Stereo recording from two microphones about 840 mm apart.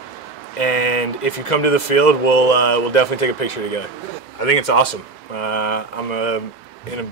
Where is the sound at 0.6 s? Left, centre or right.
Left.